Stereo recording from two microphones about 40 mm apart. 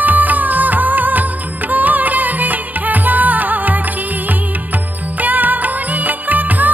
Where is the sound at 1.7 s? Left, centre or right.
Right.